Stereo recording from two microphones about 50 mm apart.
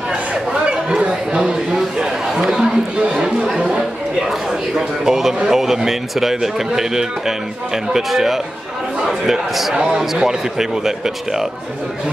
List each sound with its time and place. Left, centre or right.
0.7 s chatter: centre
4.7 s speech: centre
9.8 s speech: centre